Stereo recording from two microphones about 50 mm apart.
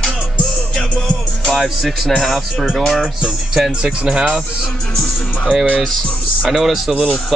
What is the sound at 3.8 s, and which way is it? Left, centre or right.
Music, centre.